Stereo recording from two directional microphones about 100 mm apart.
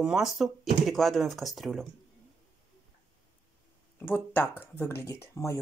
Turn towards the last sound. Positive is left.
turn(degrees=30)  # may be behind; listen again after turning